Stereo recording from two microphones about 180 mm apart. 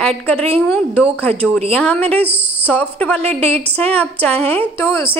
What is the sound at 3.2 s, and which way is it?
Speech, 35° right (ahead or behind).